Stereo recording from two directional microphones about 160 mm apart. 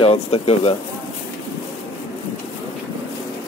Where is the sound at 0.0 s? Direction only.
40° left (ahead or behind).